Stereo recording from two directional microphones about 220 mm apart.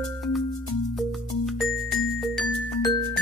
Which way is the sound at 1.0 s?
Centre (ahead or behind).